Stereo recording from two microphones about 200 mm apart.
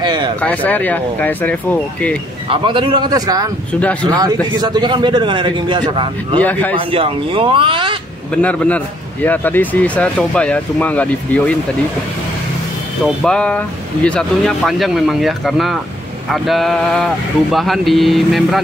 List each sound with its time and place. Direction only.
0.0 s a sound: 20° right (ahead or behind)
0.4 s speech: 5° left (ahead or behind)
2.5 s speech: 25° right (ahead or behind)
3.8 s speech: 5° left (ahead or behind)
4.1 s speech: 20° right (ahead or behind)
6.4 s speech: 10° left (ahead or behind)
6.7 s speech: 25° right (ahead or behind)
8.3 s speech: 5° left (ahead or behind)
13.0 s speech: 5° left (ahead or behind)